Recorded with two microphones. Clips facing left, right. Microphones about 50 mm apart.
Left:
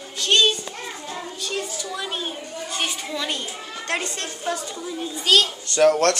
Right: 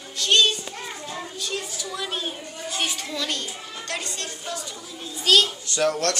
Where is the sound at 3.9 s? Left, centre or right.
Left.